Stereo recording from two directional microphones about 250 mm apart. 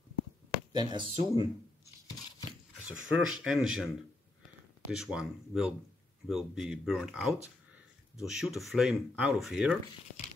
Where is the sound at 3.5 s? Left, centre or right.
Centre.